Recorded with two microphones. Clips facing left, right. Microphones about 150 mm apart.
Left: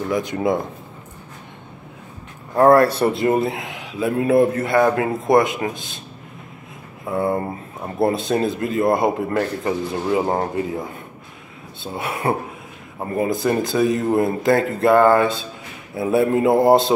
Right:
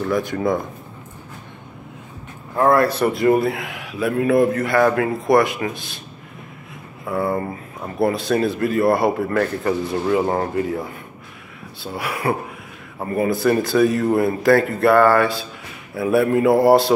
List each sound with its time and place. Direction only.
0.0 s speech: 20° left (ahead or behind)
2.5 s speech: 40° left (ahead or behind); by 5.7 s 20° left (ahead or behind)
7.1 s speech: 20° left (ahead or behind)
11.9 s speech: 25° left (ahead or behind)